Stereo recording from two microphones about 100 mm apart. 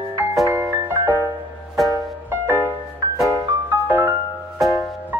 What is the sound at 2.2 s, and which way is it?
Music, 20° right (ahead or behind).